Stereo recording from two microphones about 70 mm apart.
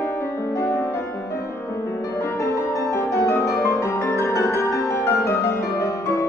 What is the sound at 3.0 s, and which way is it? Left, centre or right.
Music, left.